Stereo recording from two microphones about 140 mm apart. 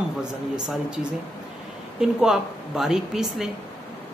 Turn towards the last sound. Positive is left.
turn(degrees=-5)  # may be behind; listen again after turning